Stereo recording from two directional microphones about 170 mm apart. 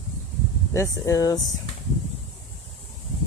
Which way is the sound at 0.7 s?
20° left (ahead or behind).